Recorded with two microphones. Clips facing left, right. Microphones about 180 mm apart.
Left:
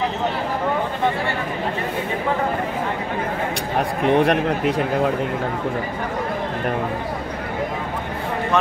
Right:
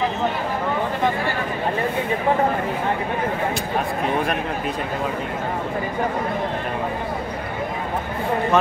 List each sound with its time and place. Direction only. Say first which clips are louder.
4.0 s a man's voice: left 10 dB; 70° left (ahead or behind)